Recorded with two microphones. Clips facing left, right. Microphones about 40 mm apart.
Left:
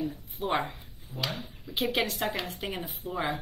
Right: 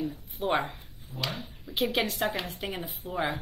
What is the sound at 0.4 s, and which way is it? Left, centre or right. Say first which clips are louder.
A woman's voice: right 1 dB; centre.